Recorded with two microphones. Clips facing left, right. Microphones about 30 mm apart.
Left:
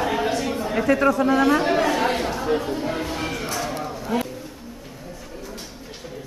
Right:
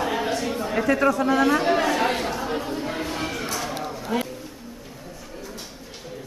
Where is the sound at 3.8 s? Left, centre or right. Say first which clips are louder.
Left 1 dB; centre.